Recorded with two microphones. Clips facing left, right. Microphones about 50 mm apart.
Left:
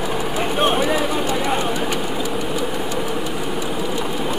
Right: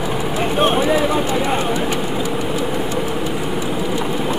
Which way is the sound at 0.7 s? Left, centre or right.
Centre.